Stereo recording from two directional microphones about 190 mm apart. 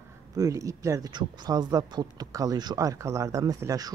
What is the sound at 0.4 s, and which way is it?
Speech, 15° right (ahead or behind).